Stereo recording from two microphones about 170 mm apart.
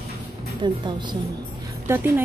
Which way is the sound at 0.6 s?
25° right (ahead or behind).